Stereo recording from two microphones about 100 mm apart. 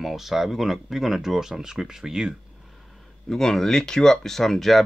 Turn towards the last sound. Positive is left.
turn(degrees=0)  # may be behind; listen again after turning